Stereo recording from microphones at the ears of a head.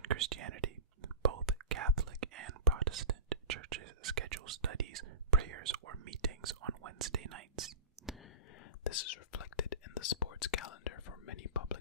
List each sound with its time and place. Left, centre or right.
0.0 s whispering: right
8.8 s whispering: left